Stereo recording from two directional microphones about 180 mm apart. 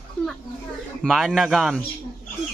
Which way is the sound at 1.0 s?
Centre (ahead or behind).